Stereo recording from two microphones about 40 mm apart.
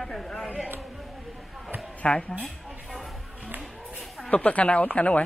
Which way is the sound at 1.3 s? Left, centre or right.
Centre.